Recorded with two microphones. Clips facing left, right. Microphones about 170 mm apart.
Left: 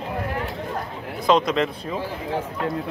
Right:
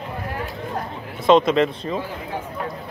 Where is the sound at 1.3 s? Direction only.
Centre (ahead or behind).